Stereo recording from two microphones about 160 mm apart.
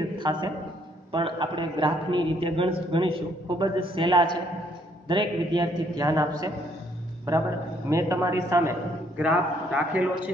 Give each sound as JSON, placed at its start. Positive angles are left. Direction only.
{"t": 0.2, "sound": "a man's voice", "side_deg": -30}
{"t": 7.9, "sound": "a man's voice", "side_deg": -20}